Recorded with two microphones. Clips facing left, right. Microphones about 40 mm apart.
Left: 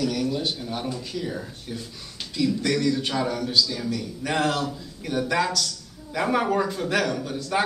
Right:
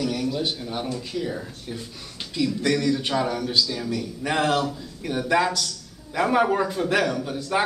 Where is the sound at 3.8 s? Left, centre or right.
Centre.